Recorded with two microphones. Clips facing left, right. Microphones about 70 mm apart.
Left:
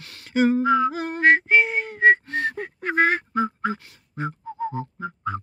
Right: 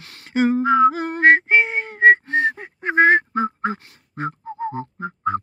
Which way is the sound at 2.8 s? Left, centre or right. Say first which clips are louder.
Right 6 dB; right.